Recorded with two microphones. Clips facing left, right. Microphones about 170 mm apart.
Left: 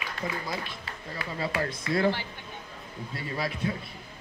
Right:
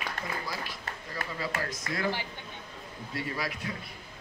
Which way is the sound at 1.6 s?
30° left (ahead or behind).